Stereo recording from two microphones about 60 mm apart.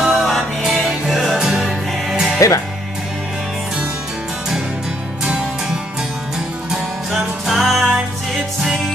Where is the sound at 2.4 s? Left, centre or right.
Left.